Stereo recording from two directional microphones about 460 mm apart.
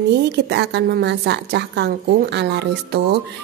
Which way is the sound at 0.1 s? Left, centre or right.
Right.